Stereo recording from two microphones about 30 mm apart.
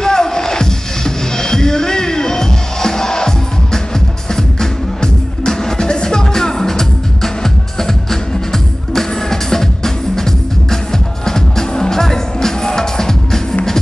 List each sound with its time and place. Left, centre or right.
0.0 s music: left